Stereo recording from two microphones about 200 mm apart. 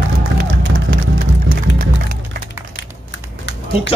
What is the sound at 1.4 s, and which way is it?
Music, 45° right (ahead or behind).